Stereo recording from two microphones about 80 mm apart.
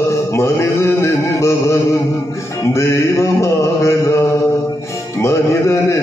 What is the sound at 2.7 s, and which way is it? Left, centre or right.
Mantra, left.